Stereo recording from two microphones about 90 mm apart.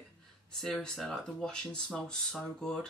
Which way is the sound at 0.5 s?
5° left (ahead or behind).